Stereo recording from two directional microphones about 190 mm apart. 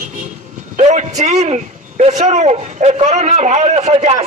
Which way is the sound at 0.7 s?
40° right (ahead or behind).